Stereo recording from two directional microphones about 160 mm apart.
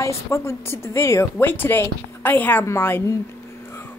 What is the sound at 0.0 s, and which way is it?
A woman's voice, 15° left (ahead or behind).